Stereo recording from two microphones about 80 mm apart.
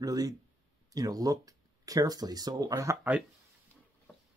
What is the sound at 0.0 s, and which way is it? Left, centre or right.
Speech, right.